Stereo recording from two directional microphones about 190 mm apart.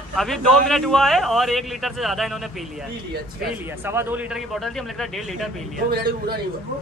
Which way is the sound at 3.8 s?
10° right (ahead or behind).